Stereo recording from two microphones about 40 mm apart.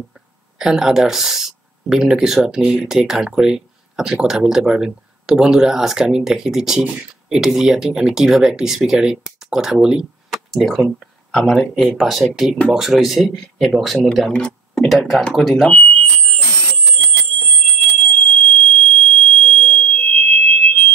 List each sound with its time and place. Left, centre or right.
0.6 s speech: centre
10.5 s speech: centre
11.5 s speech: centre
12.0 s speech: centre
13.2 s speech: centre
14.3 s speech: left
15.0 s speech: centre
15.7 s alarm: left